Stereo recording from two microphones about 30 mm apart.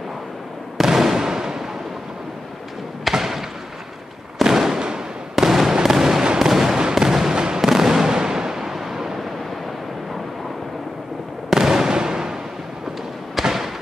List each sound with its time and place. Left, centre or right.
0.7 s fireworks: centre
3.1 s a sound: centre
4.4 s fireworks: centre
4.7 s fireworks: right
5.4 s fireworks: centre
6.2 s artillery fire: right
6.5 s fireworks: centre
6.8 s artillery fire: centre
7.3 s fireworks: right
7.6 s fireworks: centre
8.1 s a sound: right
11.5 s fireworks: centre
11.9 s a sound: right
13.4 s fireworks: centre